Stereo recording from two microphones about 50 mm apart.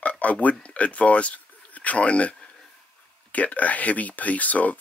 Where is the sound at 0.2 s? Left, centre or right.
Left.